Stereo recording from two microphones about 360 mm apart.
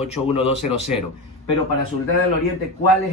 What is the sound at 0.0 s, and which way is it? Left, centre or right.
Speech, centre.